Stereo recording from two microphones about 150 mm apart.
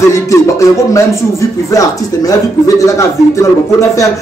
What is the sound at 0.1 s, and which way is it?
A man's voice, 20° left (ahead or behind).